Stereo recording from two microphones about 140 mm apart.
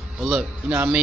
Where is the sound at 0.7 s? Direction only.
15° right (ahead or behind).